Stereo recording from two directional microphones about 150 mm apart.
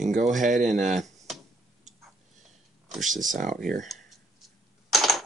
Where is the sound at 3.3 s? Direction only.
60° right (ahead or behind).